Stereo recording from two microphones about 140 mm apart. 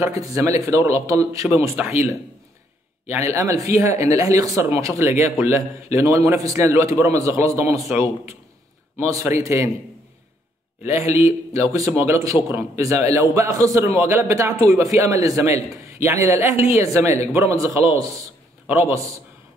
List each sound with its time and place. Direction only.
0.0 s a man's voice: 20° right (ahead or behind)
3.1 s a man's voice: 20° right (ahead or behind)
11.0 s a man's voice: 20° right (ahead or behind)